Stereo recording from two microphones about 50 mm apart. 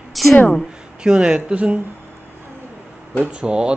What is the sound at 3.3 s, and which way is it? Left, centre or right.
Speech, centre.